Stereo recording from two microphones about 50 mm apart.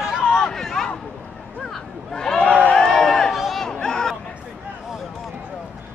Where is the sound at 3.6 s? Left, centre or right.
Centre.